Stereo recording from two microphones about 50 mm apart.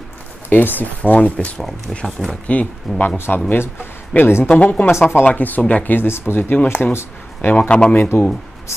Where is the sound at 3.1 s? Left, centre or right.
Left.